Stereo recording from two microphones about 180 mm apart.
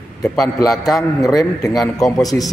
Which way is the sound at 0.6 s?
Centre (ahead or behind).